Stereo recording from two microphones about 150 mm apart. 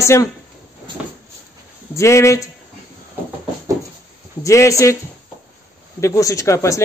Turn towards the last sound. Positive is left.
turn(degrees=20)  # may be behind; listen again after turning